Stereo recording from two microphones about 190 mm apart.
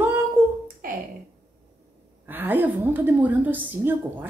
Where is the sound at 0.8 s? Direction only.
50° right (ahead or behind).